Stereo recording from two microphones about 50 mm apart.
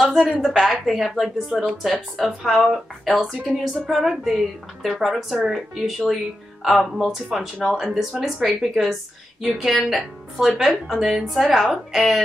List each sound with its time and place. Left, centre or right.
0.0 s a woman's voice: centre